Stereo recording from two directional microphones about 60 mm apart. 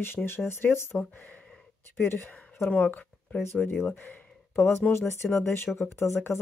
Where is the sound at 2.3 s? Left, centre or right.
Left.